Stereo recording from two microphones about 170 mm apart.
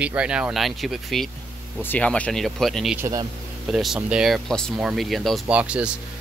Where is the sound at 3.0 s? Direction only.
15° right (ahead or behind).